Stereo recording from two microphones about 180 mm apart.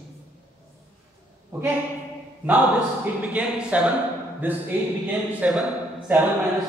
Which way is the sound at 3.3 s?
10° right (ahead or behind).